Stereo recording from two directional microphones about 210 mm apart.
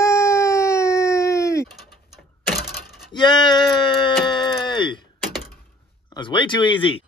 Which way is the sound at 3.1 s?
20° left (ahead or behind).